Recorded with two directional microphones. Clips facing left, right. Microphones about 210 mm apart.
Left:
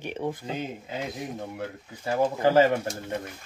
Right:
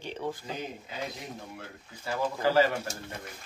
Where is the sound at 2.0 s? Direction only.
20° left (ahead or behind).